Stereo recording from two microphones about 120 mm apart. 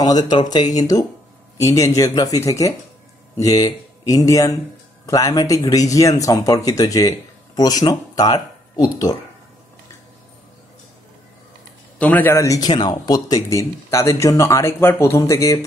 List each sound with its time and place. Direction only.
0.0 s speech: 35° left (ahead or behind)
12.0 s speech: 15° left (ahead or behind)